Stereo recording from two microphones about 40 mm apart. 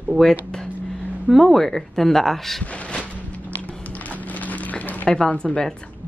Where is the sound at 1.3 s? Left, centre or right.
Centre.